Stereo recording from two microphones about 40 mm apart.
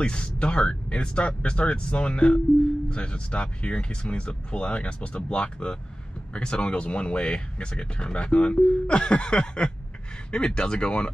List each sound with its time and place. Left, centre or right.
0.0 s speech: left